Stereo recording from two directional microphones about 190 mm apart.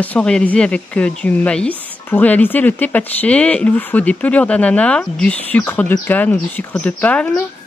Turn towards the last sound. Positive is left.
turn(degrees=10)  # may be behind; listen again after turning